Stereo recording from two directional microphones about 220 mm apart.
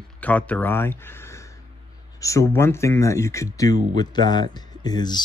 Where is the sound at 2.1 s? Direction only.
15° left (ahead or behind).